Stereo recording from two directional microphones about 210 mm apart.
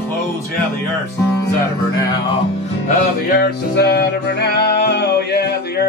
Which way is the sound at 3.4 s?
50° left (ahead or behind).